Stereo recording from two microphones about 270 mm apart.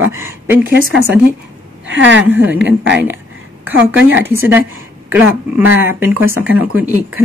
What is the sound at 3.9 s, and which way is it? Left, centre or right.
Speech, centre.